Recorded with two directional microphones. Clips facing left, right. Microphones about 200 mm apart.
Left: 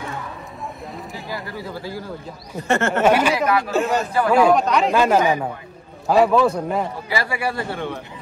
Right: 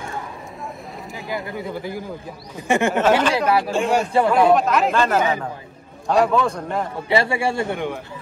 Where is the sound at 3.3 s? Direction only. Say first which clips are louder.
Right 1 dB; 30° right (ahead or behind).